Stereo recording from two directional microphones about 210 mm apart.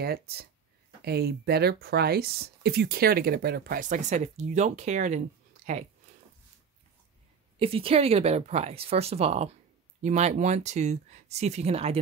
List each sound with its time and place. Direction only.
0.0 s speech: 50° right (ahead or behind)
5.6 s a sound: 35° right (ahead or behind)
7.5 s speech: 25° right (ahead or behind)